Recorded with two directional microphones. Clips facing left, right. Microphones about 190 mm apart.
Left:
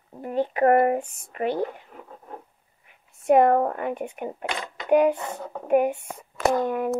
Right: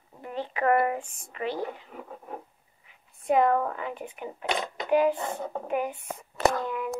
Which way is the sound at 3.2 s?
55° left (ahead or behind).